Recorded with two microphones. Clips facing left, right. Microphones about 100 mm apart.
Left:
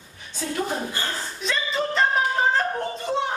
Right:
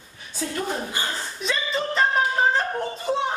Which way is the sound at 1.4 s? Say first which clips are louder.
Even; centre (ahead or behind).